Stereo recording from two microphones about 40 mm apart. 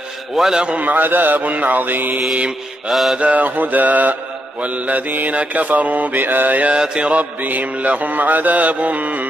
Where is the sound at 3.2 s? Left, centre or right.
Right.